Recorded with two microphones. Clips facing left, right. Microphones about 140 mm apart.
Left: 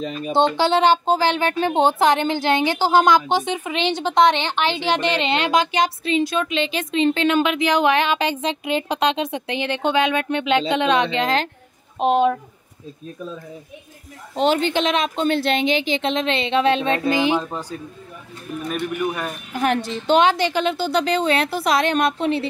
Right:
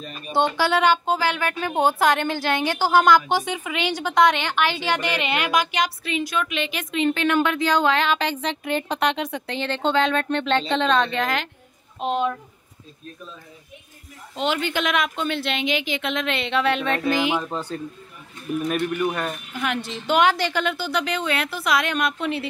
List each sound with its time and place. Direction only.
0.3 s a woman's voice: 25° left (ahead or behind)
12.0 s speech: 65° left (ahead or behind)
14.3 s a woman's voice: 35° left (ahead or behind)
17.5 s speech: 10° left (ahead or behind)
19.5 s a woman's voice: 40° left (ahead or behind)
20.1 s a woman's voice: 20° left (ahead or behind)